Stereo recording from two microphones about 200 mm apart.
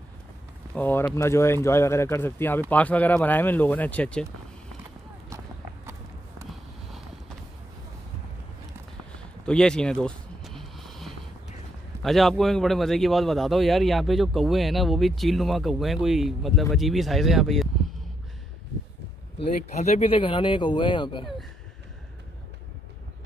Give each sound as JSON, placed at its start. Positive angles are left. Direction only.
{"t": 0.7, "sound": "speech", "side_deg": 10}
{"t": 9.1, "sound": "a sound", "side_deg": 5}
{"t": 12.0, "sound": "speech", "side_deg": 0}
{"t": 19.3, "sound": "speech", "side_deg": 30}